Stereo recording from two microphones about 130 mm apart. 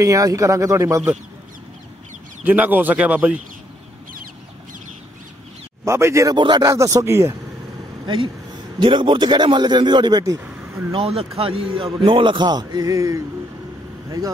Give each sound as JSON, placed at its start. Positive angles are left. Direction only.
{"t": 0.0, "sound": "speech", "side_deg": -25}
{"t": 2.4, "sound": "speech", "side_deg": -15}
{"t": 5.9, "sound": "speech", "side_deg": -20}
{"t": 6.3, "sound": "speech", "side_deg": -35}
{"t": 8.7, "sound": "a man's voice", "side_deg": -40}
{"t": 10.9, "sound": "a man's voice", "side_deg": -45}